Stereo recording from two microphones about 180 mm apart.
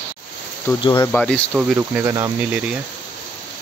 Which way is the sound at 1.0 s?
5° left (ahead or behind).